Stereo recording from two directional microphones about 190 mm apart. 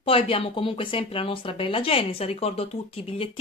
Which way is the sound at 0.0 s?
30° left (ahead or behind).